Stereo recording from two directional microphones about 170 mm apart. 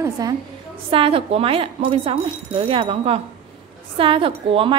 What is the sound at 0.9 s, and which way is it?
A woman's voice, 35° right (ahead or behind).